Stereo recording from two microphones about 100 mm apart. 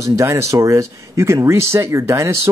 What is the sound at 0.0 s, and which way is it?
Speech, 30° right (ahead or behind).